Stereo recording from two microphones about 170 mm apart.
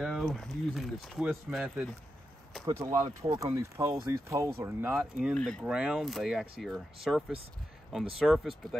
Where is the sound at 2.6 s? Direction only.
20° right (ahead or behind).